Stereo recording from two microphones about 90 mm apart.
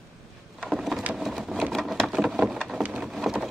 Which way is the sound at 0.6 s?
5° right (ahead or behind).